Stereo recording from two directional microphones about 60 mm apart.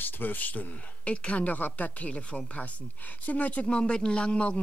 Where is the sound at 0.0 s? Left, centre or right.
Left.